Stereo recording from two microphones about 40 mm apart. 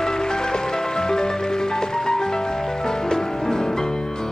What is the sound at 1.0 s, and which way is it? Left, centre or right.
Music, centre.